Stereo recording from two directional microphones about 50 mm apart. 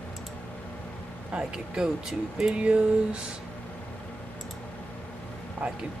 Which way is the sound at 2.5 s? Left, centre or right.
Right.